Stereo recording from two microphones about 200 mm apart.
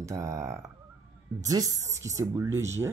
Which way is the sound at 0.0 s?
15° right (ahead or behind).